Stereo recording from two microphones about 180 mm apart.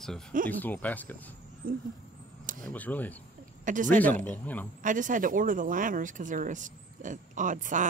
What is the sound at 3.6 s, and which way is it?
Speech, 45° right (ahead or behind).